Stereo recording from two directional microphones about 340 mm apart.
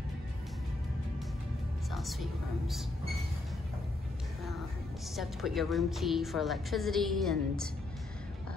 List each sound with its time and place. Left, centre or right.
1.9 s music: centre
5.1 s a woman's voice: centre